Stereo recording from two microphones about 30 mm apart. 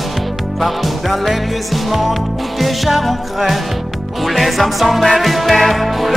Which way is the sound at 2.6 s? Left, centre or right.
Centre.